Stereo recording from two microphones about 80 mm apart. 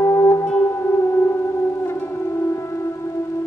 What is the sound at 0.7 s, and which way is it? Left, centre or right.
Music, left.